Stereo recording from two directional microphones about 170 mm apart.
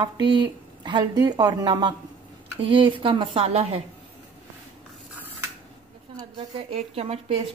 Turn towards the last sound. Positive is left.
turn(degrees=-35)  # may be behind; listen again after turning